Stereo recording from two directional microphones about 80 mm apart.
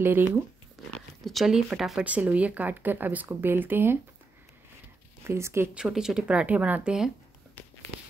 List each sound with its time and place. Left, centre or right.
0.0 s speech: right
0.9 s speech: centre
2.0 s speech: centre
5.2 s speech: right
5.8 s speech: centre